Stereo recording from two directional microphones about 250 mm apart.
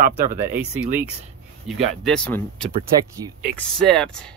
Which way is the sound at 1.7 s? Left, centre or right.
Centre.